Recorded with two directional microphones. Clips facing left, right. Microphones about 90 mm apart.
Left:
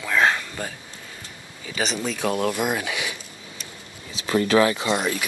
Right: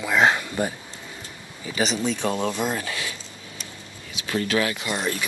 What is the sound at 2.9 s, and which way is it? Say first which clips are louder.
Speech: left 2 dB; 15° left (ahead or behind).